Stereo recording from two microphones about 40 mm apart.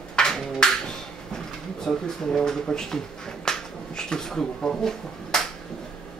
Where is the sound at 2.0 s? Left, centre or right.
Centre.